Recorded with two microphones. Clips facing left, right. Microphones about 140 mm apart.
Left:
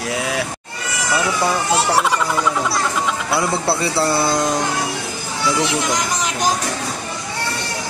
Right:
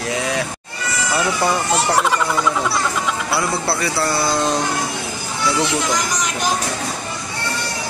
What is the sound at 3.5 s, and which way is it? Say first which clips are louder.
Speech: left 2 dB; 25° left (ahead or behind).